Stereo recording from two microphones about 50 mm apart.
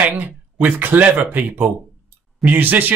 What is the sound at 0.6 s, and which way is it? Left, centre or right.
Speech, right.